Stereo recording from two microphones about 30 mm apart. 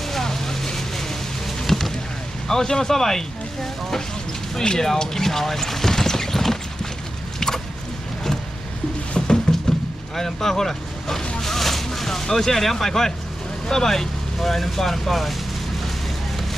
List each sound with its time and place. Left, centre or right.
0.0 s vehicle: centre
2.4 s speech: centre
4.6 s vehicle: centre
7.3 s boat: centre
9.2 s music: centre
10.1 s speech: centre